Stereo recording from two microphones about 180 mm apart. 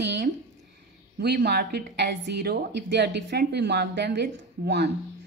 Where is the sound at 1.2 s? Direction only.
65° right (ahead or behind).